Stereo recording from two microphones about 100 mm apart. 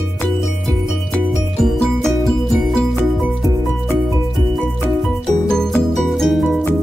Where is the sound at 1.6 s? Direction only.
Centre (ahead or behind).